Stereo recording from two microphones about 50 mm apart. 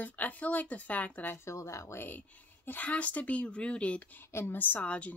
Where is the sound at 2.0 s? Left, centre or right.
Left.